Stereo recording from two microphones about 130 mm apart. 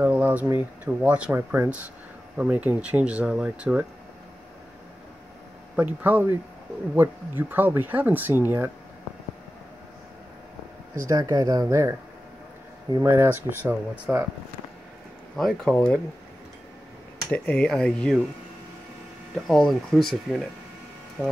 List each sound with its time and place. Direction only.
0.0 s speech: 10° right (ahead or behind)
5.8 s speech: 10° right (ahead or behind)
11.1 s speech: 25° right (ahead or behind)
12.9 s speech: 20° right (ahead or behind)
15.3 s speech: centre (ahead or behind)
17.3 s speech: 10° left (ahead or behind)
19.3 s speech: centre (ahead or behind)
21.2 s speech: 10° right (ahead or behind)